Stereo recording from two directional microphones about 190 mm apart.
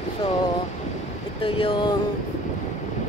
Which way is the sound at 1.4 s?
25° left (ahead or behind).